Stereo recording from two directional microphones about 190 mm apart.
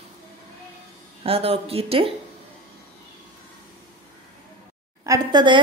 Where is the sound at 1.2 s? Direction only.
30° right (ahead or behind).